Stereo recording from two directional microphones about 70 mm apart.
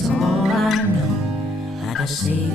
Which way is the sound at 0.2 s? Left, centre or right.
Centre.